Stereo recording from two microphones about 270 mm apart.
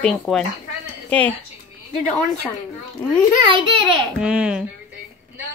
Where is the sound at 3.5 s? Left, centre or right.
Centre.